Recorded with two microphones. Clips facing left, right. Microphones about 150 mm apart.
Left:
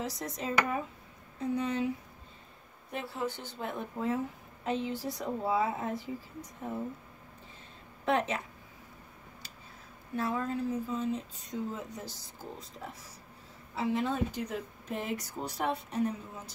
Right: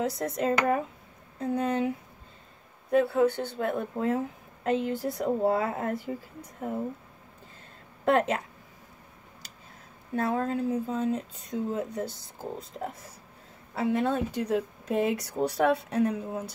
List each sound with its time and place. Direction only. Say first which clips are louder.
0.0 s speech: right 8 dB; 60° right (ahead or behind)
3.1 s speech: right 12 dB; 60° right (ahead or behind)
8.0 s a woman's voice: right 6 dB; 50° right (ahead or behind)
10.1 s speech: right 5 dB; 55° right (ahead or behind); by 16.4 s 75° right (ahead or behind)